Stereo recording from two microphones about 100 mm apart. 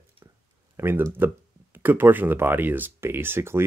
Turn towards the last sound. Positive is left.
turn(degrees=-25)  # may be behind; listen again after turning